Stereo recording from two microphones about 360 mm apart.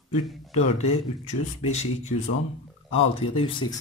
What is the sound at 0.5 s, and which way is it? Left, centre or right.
Speech, centre.